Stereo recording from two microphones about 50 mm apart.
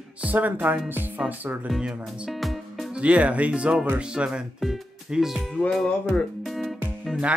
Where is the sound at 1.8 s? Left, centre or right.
Centre.